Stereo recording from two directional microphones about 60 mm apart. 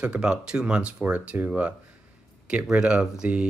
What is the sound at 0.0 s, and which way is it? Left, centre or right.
Speech, centre.